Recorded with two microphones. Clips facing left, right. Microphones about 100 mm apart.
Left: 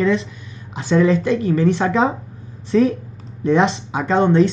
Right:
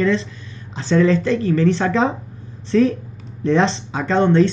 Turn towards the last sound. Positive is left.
turn(degrees=15)  # may be behind; listen again after turning